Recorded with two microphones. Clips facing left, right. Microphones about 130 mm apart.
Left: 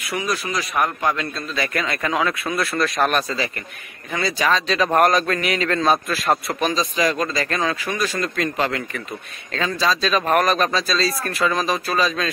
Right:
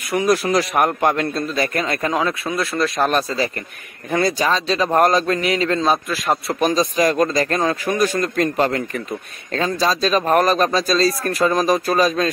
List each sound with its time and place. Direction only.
0.0 s speech: 55° right (ahead or behind); by 0.8 s 70° right (ahead or behind)
0.8 s a man's voice: 50° right (ahead or behind); by 3.4 s 30° right (ahead or behind)
4.1 s a man's voice: 45° right (ahead or behind)
4.5 s a man's voice: 30° right (ahead or behind)
4.9 s a sound: 30° right (ahead or behind)
6.6 s a man's voice: 45° right (ahead or behind)